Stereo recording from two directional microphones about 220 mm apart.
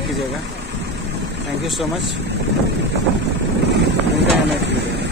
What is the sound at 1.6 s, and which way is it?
Speech, centre (ahead or behind).